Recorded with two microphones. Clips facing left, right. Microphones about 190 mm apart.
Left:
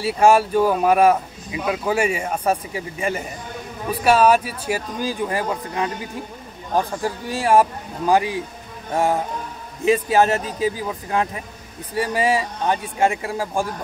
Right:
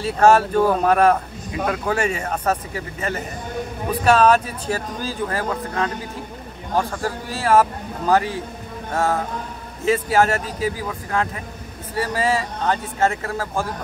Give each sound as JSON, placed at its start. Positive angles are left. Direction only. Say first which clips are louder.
{"t": 0.0, "sound": "speech", "louder": "even", "side_deg": 10}